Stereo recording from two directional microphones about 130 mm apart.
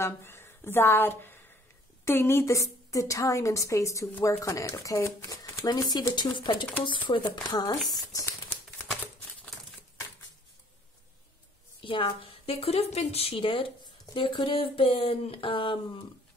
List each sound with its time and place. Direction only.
0.0 s a woman's voice: 20° left (ahead or behind)
11.8 s a woman's voice: 45° left (ahead or behind)